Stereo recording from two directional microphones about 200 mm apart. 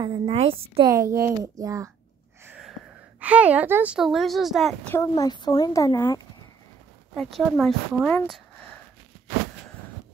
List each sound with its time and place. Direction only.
0.0 s a woman's voice: 25° right (ahead or behind)
0.9 s speech: 15° right (ahead or behind)
2.4 s wheeze: 5° right (ahead or behind)
3.2 s a woman's voice: 5° right (ahead or behind)
4.9 s speech: 15° left (ahead or behind)
7.2 s a woman's voice: centre (ahead or behind)